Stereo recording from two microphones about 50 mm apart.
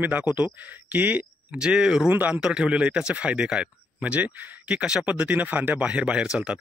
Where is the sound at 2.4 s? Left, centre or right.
Centre.